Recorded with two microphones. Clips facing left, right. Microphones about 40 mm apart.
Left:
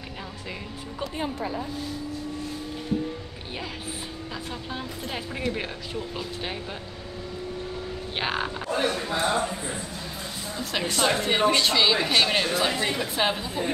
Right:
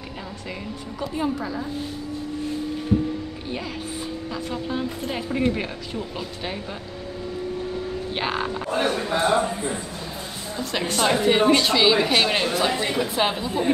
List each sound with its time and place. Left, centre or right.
1.1 s a woman's voice: centre
4.5 s a woman's voice: centre
8.2 s a woman's voice: centre
8.6 s a man's voice: right
10.6 s a woman's voice: centre